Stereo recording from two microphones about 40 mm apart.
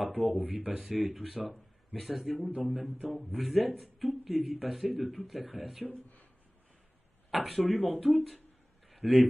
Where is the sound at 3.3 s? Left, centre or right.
Centre.